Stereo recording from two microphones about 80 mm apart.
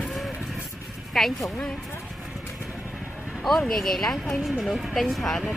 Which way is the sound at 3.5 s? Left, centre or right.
Centre.